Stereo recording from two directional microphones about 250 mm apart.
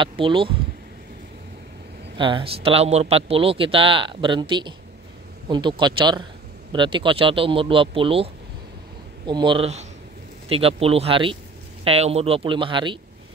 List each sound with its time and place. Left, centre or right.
0.0 s speech: right
2.1 s speech: centre